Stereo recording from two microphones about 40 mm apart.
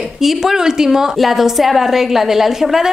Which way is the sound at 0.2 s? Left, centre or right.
Centre.